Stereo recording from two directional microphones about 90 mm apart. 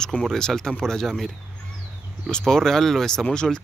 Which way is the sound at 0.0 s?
5° left (ahead or behind).